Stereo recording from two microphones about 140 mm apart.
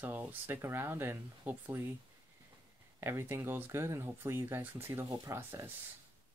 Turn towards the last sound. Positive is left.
turn(degrees=-15)  # may be behind; listen again after turning